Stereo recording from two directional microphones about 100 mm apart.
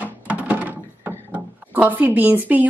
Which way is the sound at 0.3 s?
15° right (ahead or behind).